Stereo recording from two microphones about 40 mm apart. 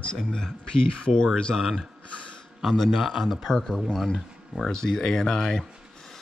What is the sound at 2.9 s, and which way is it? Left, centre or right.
Speech, centre.